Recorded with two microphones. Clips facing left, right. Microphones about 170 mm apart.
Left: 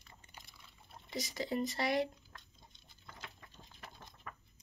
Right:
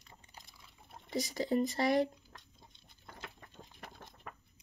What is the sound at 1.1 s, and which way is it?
Speech, 45° right (ahead or behind).